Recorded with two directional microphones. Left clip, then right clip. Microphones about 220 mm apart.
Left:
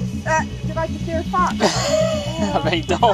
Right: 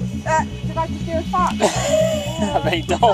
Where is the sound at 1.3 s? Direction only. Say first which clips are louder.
Even; 40° right (ahead or behind).